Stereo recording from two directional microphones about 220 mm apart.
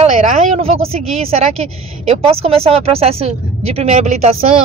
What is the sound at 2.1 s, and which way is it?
Speech, 25° right (ahead or behind).